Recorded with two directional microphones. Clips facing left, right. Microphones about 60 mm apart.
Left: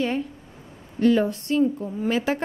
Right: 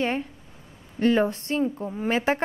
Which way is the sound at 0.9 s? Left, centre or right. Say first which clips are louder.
Left 2 dB; right.